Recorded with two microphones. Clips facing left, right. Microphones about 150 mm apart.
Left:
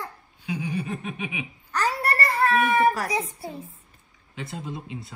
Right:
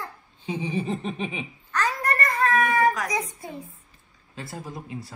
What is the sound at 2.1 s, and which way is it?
Baby cry, 30° left (ahead or behind).